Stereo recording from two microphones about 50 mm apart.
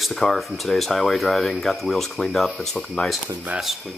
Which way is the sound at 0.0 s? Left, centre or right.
Centre.